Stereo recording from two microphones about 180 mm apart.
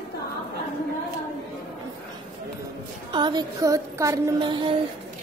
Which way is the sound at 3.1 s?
25° right (ahead or behind).